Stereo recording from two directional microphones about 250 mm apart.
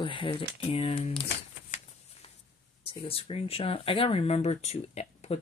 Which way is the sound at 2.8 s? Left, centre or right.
Left.